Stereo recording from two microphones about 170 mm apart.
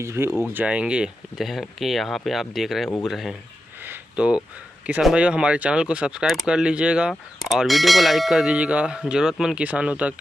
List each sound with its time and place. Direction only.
0.0 s speech: 15° right (ahead or behind); by 3.3 s centre (ahead or behind)
3.8 s a sound: 10° right (ahead or behind)
4.8 s speech: 5° right (ahead or behind)